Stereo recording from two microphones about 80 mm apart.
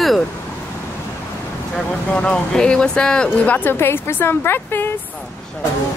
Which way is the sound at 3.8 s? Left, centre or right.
Left.